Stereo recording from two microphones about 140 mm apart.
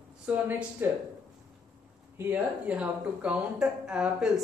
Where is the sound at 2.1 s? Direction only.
10° right (ahead or behind).